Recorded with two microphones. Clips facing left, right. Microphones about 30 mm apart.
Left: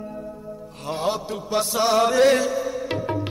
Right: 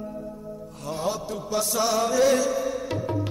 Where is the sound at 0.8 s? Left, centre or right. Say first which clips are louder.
Left 3 dB; left.